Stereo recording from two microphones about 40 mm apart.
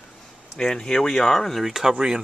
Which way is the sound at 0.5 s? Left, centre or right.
Centre.